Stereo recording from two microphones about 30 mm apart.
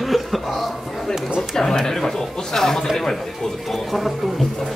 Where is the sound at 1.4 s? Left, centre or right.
Centre.